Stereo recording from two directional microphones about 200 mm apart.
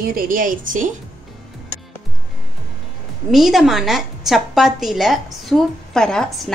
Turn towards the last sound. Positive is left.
turn(degrees=5)  # may be behind; listen again after turning